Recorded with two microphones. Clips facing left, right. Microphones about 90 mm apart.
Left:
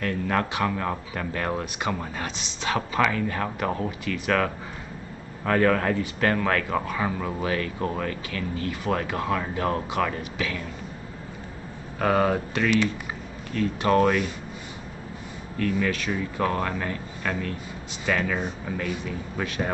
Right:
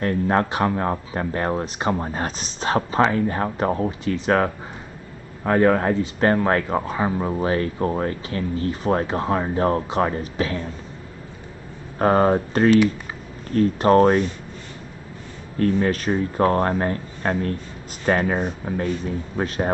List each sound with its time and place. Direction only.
0.0 s speech: 35° right (ahead or behind)
12.0 s speech: 35° right (ahead or behind)
15.6 s speech: 40° right (ahead or behind)